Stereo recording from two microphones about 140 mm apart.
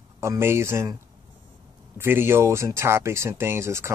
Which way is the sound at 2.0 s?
15° right (ahead or behind).